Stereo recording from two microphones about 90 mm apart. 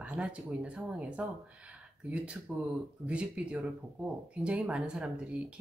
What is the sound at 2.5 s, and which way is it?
Speech, 5° right (ahead or behind).